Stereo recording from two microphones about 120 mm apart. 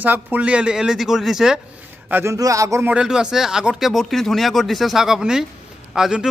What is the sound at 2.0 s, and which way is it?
Speech, 15° right (ahead or behind).